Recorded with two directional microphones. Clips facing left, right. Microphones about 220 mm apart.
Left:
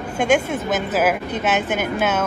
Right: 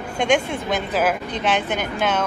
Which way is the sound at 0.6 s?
5° left (ahead or behind).